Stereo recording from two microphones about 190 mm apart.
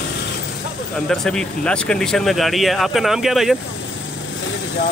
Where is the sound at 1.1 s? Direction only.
5° left (ahead or behind).